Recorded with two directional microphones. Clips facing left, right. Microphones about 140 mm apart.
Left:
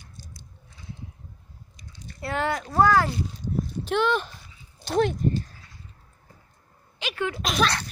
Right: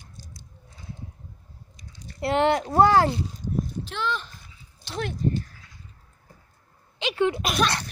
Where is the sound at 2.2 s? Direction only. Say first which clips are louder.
Right 6 dB; 25° right (ahead or behind).